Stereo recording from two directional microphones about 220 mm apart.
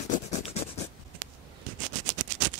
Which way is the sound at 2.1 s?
35° right (ahead or behind).